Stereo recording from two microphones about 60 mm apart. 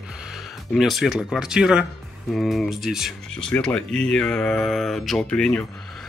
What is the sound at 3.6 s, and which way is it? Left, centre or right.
Speech, centre.